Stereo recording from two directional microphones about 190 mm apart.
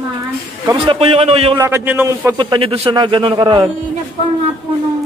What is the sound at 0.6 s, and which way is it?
Speech, 30° right (ahead or behind).